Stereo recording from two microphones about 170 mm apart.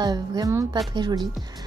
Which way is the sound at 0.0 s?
20° right (ahead or behind).